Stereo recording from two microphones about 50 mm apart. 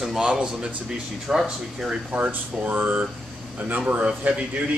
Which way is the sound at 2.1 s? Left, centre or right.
Right.